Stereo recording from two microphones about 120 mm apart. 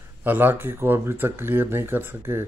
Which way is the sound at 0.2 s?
15° right (ahead or behind).